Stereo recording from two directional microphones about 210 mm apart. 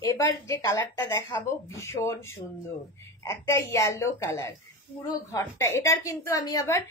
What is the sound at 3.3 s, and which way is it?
Speech, 15° left (ahead or behind).